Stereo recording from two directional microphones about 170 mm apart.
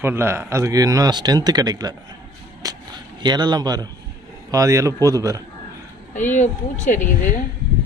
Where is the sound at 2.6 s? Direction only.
20° right (ahead or behind).